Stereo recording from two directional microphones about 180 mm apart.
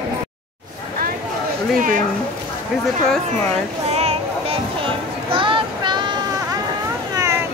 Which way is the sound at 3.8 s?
35° right (ahead or behind).